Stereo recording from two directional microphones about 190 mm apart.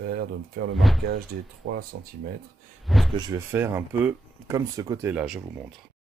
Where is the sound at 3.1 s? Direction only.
20° right (ahead or behind).